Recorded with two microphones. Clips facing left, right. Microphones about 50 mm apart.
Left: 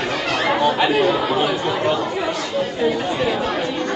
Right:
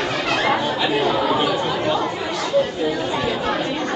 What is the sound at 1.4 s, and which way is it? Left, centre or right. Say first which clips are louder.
Speech: left 1 dB; left.